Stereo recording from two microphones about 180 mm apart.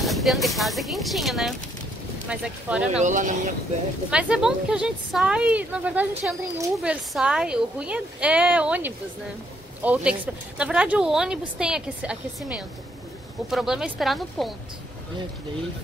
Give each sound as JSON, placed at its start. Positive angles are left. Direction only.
{"t": 0.0, "sound": "a woman's voice", "side_deg": 0}
{"t": 2.9, "sound": "speech", "side_deg": -45}
{"t": 4.1, "sound": "a woman's voice", "side_deg": -5}